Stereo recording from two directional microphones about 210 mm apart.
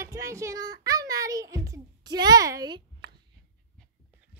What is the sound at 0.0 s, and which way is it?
Music, 15° right (ahead or behind).